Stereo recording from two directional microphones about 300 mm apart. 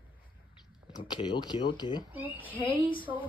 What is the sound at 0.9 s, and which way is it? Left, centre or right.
Speech, centre.